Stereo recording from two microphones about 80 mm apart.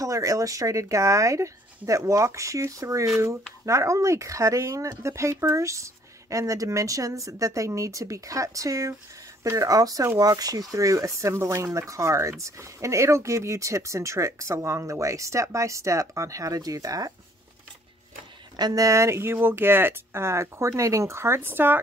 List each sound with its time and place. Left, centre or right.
0.0 s speech: right
18.6 s speech: right